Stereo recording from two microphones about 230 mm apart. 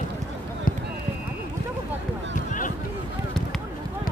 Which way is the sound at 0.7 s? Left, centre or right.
Left.